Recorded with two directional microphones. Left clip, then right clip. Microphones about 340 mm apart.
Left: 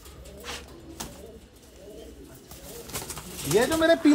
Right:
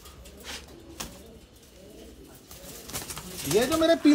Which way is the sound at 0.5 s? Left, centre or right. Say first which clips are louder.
Left 1 dB; centre.